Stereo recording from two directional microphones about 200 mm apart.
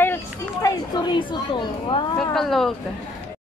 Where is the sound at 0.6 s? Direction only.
20° left (ahead or behind).